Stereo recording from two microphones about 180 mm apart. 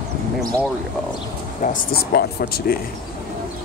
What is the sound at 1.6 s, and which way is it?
Speech, 50° left (ahead or behind).